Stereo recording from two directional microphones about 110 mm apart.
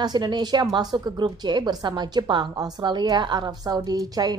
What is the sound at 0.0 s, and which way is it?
A woman's voice, 40° right (ahead or behind).